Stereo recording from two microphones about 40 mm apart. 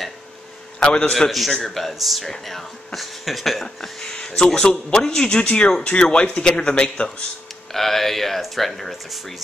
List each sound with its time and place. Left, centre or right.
0.7 s a man's voice: left
1.5 s speech: centre
3.6 s speech: centre
7.7 s speech: centre